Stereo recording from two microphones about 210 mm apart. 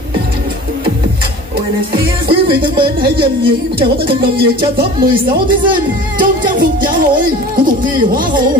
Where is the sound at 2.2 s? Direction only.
25° right (ahead or behind).